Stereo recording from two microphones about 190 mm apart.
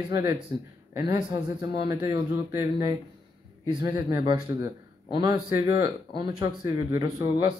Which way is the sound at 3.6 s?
20° right (ahead or behind).